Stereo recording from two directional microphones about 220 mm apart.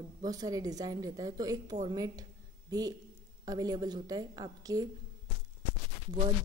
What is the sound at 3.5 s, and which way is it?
A woman's voice, 15° right (ahead or behind).